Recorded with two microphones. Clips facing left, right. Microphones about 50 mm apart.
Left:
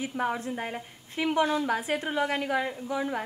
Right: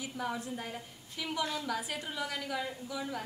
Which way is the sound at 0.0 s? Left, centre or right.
Left.